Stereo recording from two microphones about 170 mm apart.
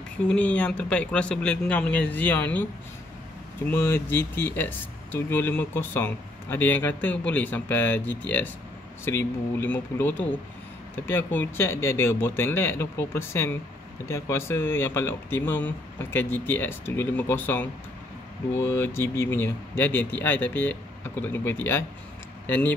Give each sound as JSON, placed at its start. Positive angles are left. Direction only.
{"t": 0.3, "sound": "speech", "side_deg": 10}
{"t": 3.7, "sound": "speech", "side_deg": 10}